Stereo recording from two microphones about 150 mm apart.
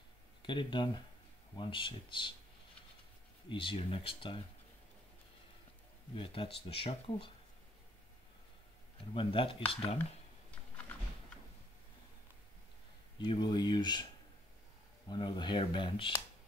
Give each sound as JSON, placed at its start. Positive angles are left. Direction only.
{"t": 0.4, "sound": "speech", "side_deg": 30}
{"t": 3.4, "sound": "speech", "side_deg": 35}
{"t": 6.1, "sound": "speech", "side_deg": 35}
{"t": 9.1, "sound": "speech", "side_deg": 35}
{"t": 13.2, "sound": "speech", "side_deg": 30}
{"t": 15.0, "sound": "speech", "side_deg": 30}